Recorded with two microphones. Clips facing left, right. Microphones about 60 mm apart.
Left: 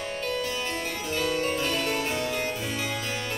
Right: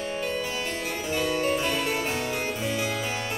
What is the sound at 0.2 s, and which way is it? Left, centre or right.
Harpsichord, centre.